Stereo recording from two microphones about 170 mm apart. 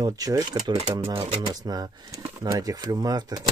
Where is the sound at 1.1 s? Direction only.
35° right (ahead or behind).